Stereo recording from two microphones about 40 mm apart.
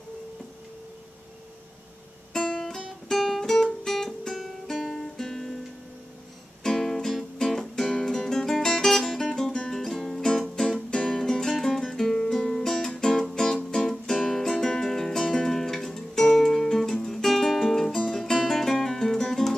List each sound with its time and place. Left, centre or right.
2.3 s guitar: centre
3.1 s music: centre
3.5 s music: centre
4.7 s guitar: centre
5.1 s music: centre
6.6 s music: centre
9.3 s music: centre